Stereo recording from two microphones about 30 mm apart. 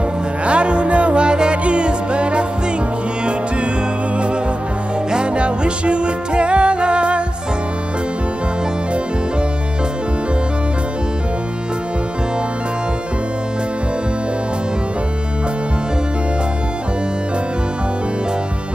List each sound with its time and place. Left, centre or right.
0.5 s music: right
5.1 s music: right